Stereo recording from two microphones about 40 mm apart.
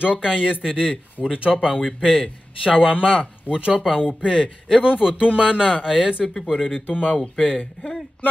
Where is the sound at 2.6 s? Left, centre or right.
Right.